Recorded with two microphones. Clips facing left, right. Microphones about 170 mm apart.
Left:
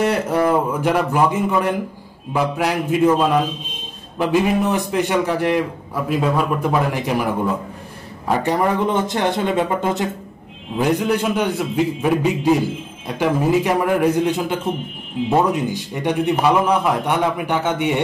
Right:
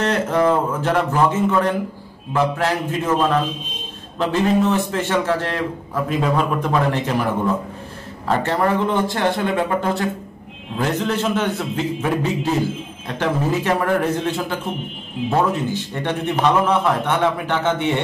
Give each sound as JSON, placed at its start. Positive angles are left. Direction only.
{"t": 0.0, "sound": "a man's voice", "side_deg": 10}